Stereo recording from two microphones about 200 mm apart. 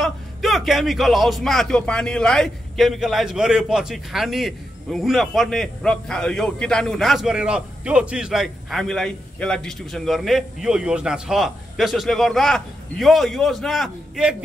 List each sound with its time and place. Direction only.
0.0 s a man's voice: centre (ahead or behind)